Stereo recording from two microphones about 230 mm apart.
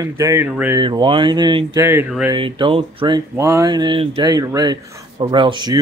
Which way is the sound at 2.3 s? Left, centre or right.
Right.